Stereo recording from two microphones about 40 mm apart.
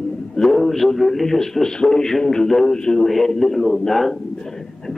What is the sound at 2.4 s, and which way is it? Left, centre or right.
Speech, centre.